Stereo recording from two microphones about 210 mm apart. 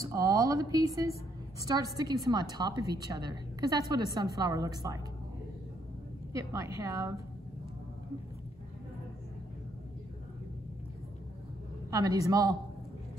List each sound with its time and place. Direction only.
0.0 s a woman's voice: 15° right (ahead or behind)
6.5 s a woman's voice: 15° right (ahead or behind)
11.9 s a woman's voice: 15° right (ahead or behind)